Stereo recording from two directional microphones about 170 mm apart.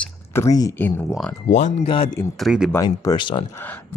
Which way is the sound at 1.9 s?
30° left (ahead or behind).